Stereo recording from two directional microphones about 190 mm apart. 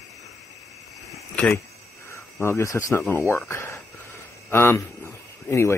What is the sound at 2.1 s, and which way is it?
Speech, 15° left (ahead or behind).